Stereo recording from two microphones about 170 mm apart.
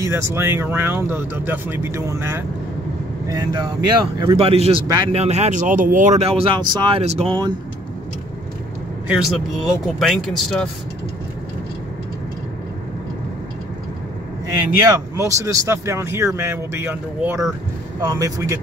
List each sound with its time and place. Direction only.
0.0 s speech: 15° right (ahead or behind)
4.4 s speech: 35° right (ahead or behind)
9.0 s speech: 5° right (ahead or behind)
14.9 s speech: 20° right (ahead or behind)